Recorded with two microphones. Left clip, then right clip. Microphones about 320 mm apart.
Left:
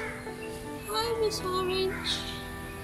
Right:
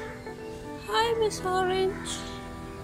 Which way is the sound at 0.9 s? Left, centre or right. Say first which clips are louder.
Right 4 dB; right.